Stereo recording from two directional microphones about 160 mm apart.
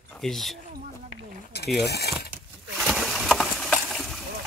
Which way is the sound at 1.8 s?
90° left.